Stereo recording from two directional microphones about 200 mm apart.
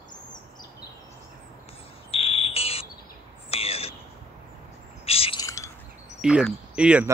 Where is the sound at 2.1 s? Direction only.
30° left (ahead or behind).